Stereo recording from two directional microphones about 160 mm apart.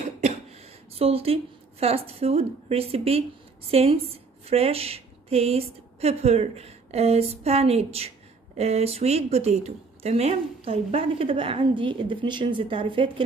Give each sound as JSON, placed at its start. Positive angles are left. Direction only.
{"t": 0.2, "sound": "a woman's voice", "side_deg": -40}